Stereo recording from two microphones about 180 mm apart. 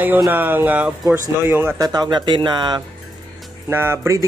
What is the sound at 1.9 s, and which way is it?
Speech, 25° right (ahead or behind).